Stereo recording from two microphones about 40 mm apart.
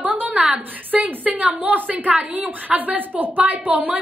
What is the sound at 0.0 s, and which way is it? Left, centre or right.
A woman's voice, right.